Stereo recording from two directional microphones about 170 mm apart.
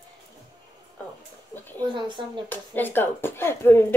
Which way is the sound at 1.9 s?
30° right (ahead or behind).